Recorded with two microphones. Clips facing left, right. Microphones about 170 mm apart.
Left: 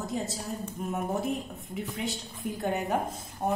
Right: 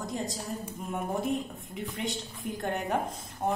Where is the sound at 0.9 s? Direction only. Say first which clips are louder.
Right 1 dB; centre (ahead or behind).